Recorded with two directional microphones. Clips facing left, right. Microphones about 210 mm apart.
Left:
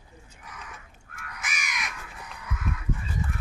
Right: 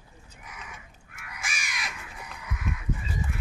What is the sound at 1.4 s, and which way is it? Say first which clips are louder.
Crow: left 1 dB; 30° right (ahead or behind).